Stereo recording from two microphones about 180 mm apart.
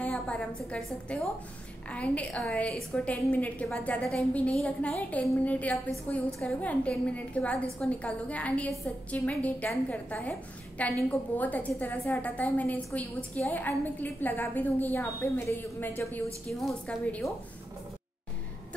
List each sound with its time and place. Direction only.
0.0 s a woman's voice: 5° left (ahead or behind)